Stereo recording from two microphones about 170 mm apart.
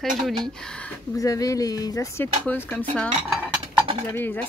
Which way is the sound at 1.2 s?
20° left (ahead or behind).